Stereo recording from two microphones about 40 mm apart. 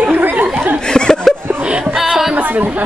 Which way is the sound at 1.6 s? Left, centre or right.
Right.